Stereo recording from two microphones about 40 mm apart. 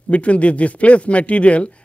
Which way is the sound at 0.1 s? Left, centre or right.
Left.